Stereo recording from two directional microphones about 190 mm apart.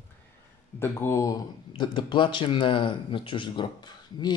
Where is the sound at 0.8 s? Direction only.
15° left (ahead or behind).